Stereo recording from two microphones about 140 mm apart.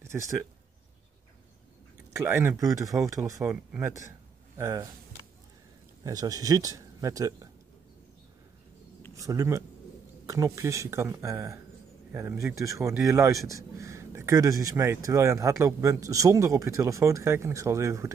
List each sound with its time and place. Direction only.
0.0 s a sound: 20° right (ahead or behind)
2.1 s speech: 20° right (ahead or behind)
6.0 s speech: 25° right (ahead or behind)
9.1 s speech: 25° right (ahead or behind)